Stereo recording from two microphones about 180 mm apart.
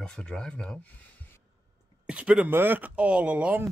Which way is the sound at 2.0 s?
5° right (ahead or behind).